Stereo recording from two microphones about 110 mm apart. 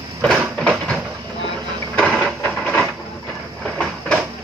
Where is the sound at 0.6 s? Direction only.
5° left (ahead or behind).